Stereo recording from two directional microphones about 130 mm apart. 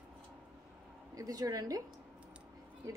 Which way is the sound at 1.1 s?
30° right (ahead or behind).